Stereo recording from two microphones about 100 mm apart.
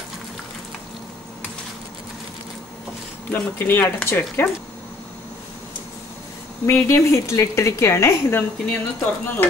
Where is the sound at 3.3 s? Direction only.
20° left (ahead or behind).